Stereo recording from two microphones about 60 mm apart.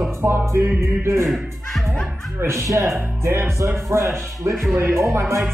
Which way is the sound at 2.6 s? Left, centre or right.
Right.